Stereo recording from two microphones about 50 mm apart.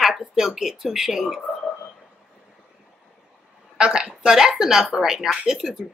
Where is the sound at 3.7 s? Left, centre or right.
Centre.